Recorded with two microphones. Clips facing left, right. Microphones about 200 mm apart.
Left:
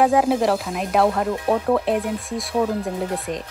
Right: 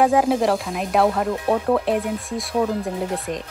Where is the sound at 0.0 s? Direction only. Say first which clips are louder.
Even; centre (ahead or behind).